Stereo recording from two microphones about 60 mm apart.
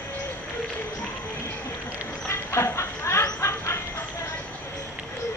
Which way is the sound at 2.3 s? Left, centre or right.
Left.